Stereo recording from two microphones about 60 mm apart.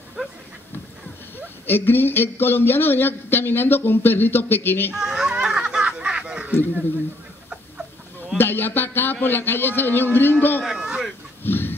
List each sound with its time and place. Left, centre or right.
1.7 s speech: left
4.9 s children playing: centre
6.4 s speech: right
8.4 s speech: left
10.6 s music: centre
11.4 s a sound: left